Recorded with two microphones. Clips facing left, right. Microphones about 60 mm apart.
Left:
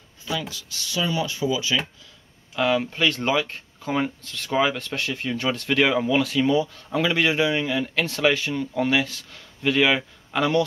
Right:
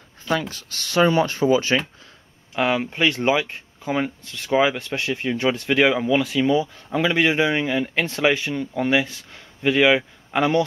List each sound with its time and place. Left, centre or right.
0.3 s speech: right
2.5 s speech: right